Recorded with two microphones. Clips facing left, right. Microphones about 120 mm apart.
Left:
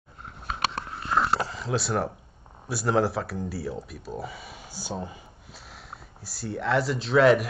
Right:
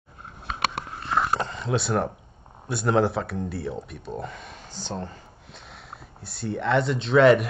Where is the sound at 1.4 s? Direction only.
Centre (ahead or behind).